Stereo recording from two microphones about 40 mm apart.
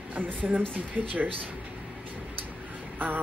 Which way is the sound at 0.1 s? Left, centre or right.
Right.